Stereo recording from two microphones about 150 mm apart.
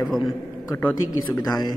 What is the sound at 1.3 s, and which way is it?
Speech, 25° left (ahead or behind).